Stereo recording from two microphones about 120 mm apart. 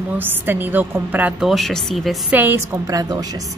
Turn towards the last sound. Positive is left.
turn(degrees=-30)  # may be behind; listen again after turning